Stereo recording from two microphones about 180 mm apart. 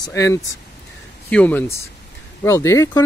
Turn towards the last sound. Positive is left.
turn(degrees=15)  # may be behind; listen again after turning